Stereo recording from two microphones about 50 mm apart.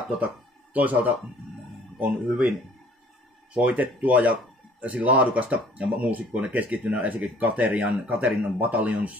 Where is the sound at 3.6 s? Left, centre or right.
Right.